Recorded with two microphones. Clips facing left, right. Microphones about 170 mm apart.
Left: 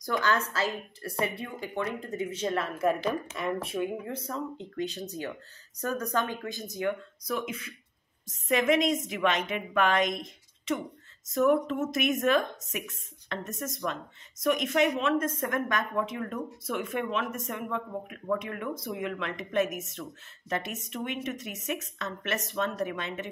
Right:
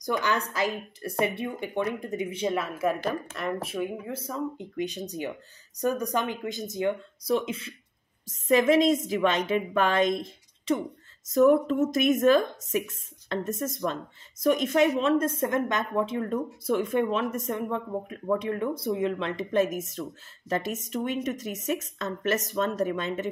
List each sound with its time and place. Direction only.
0.0 s a woman's voice: 15° right (ahead or behind); by 23.3 s 40° right (ahead or behind)